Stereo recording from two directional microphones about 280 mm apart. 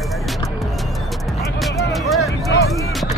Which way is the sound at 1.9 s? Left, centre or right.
Centre.